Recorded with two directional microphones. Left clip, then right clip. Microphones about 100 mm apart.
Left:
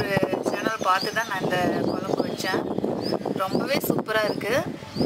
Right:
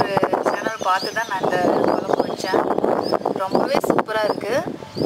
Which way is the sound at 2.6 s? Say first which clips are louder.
Right 9 dB; 75° right (ahead or behind).